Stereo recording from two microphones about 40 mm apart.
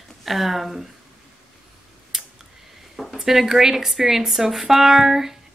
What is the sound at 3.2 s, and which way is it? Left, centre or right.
Speech, centre.